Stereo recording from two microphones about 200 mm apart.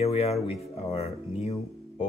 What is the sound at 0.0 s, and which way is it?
Music, 30° left (ahead or behind).